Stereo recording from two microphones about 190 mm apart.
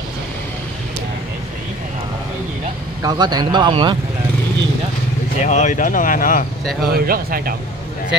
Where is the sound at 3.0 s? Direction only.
20° right (ahead or behind).